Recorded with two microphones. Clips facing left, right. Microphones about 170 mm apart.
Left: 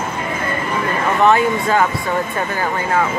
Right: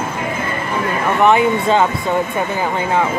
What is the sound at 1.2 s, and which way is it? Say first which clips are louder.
Speech: right 1 dB; 20° right (ahead or behind).